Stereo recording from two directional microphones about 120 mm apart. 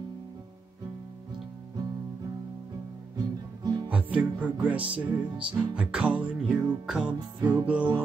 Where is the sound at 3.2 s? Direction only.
30° right (ahead or behind).